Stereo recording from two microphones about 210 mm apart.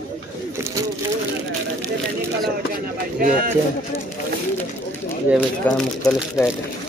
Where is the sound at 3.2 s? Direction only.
45° right (ahead or behind).